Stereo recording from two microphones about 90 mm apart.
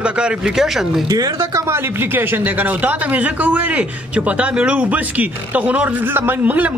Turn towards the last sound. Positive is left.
turn(degrees=-20)  # may be behind; listen again after turning